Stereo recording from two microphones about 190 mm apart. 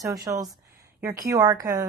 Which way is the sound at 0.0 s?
15° right (ahead or behind).